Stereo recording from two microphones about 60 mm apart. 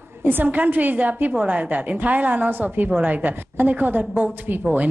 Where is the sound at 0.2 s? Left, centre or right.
Right.